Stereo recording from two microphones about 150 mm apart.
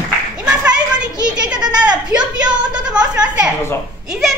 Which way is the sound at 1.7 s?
30° right (ahead or behind).